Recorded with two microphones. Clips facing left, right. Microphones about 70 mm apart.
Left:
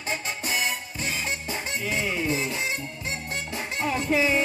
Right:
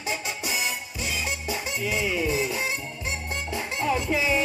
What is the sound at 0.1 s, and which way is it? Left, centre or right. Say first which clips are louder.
Music: left 2 dB; left.